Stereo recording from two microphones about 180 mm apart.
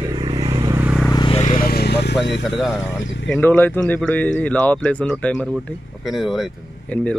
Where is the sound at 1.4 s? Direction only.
50° left (ahead or behind); by 2.1 s 65° left (ahead or behind).